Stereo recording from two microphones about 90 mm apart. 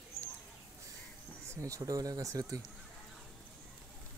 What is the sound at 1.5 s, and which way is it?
Speech, 35° right (ahead or behind).